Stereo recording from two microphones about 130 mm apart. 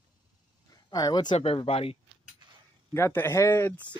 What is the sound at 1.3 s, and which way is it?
Speech, 50° left (ahead or behind).